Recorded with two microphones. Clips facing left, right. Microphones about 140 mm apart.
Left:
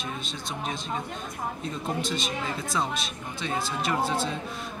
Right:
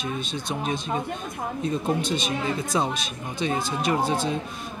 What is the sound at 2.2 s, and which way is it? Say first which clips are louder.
Speech: right 5 dB; 15° right (ahead or behind).